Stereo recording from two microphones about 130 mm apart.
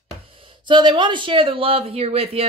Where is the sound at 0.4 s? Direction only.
40° right (ahead or behind).